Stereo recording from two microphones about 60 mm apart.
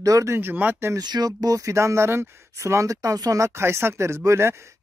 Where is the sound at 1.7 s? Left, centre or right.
Right.